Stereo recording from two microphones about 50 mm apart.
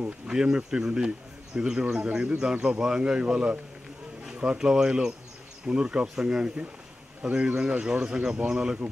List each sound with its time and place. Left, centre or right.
0.3 s speech: centre
4.3 s a sound: right
4.6 s speech: centre